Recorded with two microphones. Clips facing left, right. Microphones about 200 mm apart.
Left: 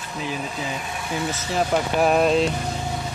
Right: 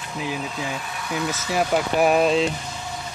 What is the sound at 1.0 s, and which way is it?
Speech, 30° left (ahead or behind).